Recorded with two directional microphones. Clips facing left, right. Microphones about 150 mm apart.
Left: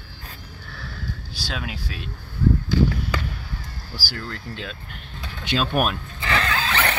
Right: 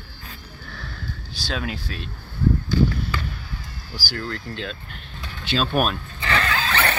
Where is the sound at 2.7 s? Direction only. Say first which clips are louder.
Right 1 dB; 90° left.